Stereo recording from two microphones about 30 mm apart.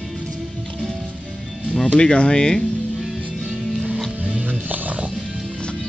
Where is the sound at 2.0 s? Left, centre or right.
Left.